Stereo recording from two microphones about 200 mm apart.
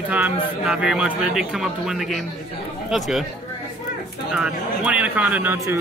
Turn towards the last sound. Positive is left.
turn(degrees=-10)  # may be behind; listen again after turning